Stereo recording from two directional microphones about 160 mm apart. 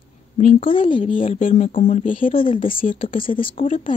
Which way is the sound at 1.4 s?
55° left (ahead or behind).